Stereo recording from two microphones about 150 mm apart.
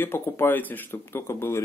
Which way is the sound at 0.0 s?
15° left (ahead or behind).